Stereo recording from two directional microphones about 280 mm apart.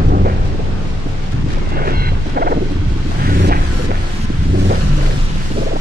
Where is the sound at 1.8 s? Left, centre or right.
Right.